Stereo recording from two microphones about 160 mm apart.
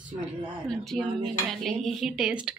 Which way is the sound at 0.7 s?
5° left (ahead or behind).